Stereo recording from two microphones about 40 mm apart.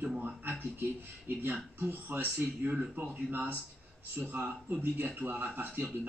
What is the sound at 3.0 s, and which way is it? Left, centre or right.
Speech, right.